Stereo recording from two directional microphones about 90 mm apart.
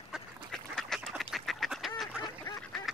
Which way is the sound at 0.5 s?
5° left (ahead or behind).